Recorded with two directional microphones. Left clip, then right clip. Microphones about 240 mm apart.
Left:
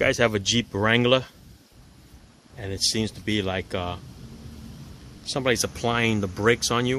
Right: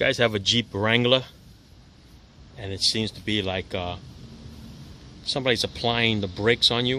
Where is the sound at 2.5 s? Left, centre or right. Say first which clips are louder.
Right 1 dB; centre.